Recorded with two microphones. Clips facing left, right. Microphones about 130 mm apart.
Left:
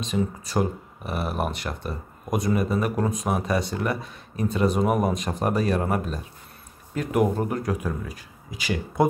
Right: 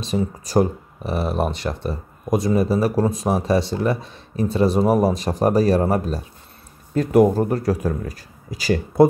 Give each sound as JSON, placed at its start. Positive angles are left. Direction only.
{"t": 0.0, "sound": "speech", "side_deg": -35}